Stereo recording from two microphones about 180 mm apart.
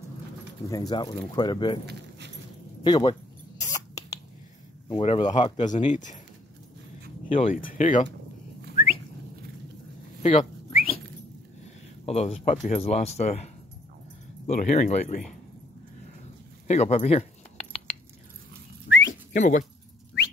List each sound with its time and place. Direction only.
0.7 s speech: 20° left (ahead or behind)
1.9 s keys jangling: 70° right (ahead or behind)
2.8 s a sound: 25° left (ahead or behind)
4.8 s speech: 30° left (ahead or behind)
7.2 s speech: 30° left (ahead or behind)
7.6 s speech: 45° left (ahead or behind)
10.2 s dog: 30° left (ahead or behind)
11.6 s a sound: 35° left (ahead or behind)
12.4 s speech: 40° left (ahead or behind)
14.5 s speech: 40° left (ahead or behind)
16.6 s a sound: 40° left (ahead or behind)
18.9 s dog: 90° left
19.3 s speech: 45° left (ahead or behind)